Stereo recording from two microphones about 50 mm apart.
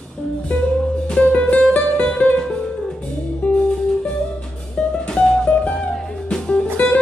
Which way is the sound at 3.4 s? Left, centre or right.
Centre.